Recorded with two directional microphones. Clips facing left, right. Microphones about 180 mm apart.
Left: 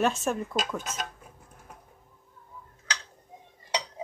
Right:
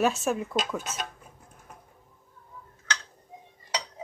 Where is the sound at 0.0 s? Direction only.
5° right (ahead or behind).